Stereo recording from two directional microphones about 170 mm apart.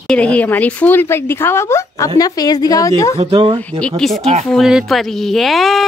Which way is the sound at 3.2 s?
35° right (ahead or behind).